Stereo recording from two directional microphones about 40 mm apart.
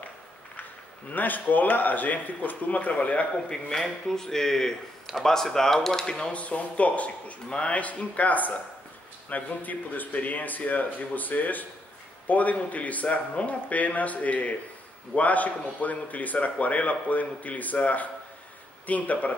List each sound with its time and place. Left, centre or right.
1.1 s a man's voice: left
3.7 s speech: centre
6.3 s a man's voice: left